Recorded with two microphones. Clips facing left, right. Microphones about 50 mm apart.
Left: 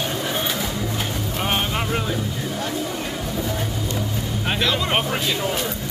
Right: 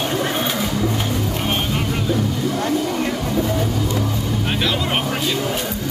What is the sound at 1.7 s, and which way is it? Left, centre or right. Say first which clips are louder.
Music: right 1 dB; left.